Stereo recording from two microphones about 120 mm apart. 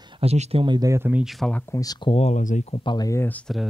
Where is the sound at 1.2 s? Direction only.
Centre (ahead or behind).